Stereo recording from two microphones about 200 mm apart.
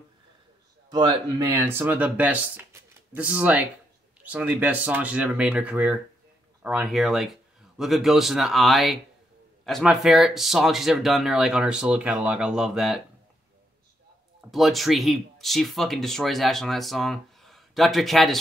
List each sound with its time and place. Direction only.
0.8 s speech: 20° right (ahead or behind)
1.6 s speech: 10° right (ahead or behind)
14.5 s speech: centre (ahead or behind)